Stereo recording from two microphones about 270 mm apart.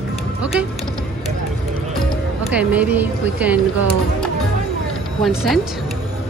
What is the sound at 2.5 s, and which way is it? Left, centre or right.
A woman's voice, centre.